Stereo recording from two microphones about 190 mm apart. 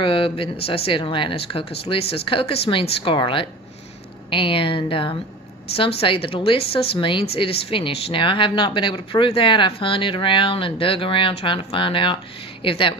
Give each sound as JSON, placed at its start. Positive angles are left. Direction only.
{"t": 0.0, "sound": "speech", "side_deg": 30}